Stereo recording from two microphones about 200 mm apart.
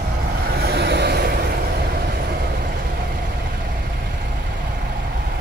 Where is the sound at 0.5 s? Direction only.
55° right (ahead or behind).